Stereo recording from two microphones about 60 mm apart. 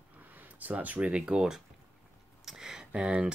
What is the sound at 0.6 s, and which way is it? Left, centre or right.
Speech, right.